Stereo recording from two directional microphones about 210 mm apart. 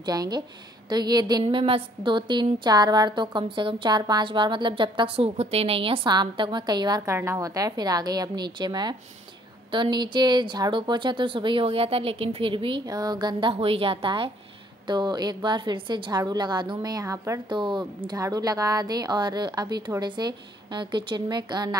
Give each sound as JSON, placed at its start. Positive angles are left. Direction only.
{"t": 0.0, "sound": "a woman's voice", "side_deg": -20}